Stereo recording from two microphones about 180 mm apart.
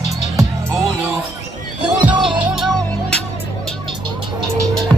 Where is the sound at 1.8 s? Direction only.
5° right (ahead or behind).